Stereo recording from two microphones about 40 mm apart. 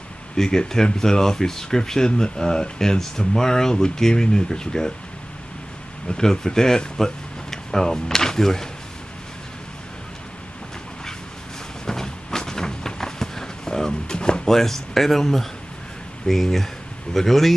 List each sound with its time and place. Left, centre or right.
0.4 s speech: centre
6.0 s speech: centre
11.8 s a sound: centre
14.5 s speech: centre